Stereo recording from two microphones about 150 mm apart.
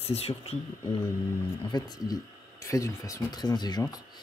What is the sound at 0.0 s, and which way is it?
Speech, 45° left (ahead or behind).